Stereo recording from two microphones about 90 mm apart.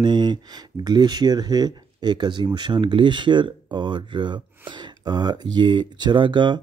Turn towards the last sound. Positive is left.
turn(degrees=-60)  # may be behind; listen again after turning